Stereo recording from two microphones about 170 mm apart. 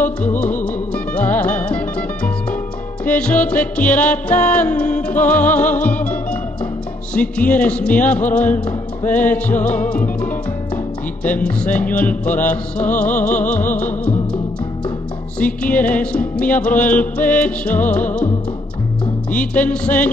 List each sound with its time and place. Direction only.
0.0 s music: 10° left (ahead or behind)
7.2 s music: 10° left (ahead or behind)
19.3 s music: 10° left (ahead or behind)